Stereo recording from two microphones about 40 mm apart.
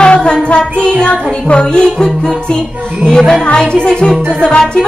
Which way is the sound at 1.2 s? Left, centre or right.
Left.